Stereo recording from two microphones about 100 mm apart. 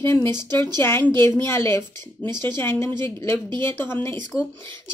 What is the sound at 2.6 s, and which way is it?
Speech, 20° left (ahead or behind).